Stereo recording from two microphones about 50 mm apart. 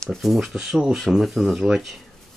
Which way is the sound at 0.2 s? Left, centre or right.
Centre.